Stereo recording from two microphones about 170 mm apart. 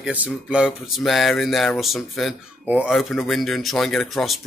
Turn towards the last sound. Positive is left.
turn(degrees=0)  # may be behind; listen again after turning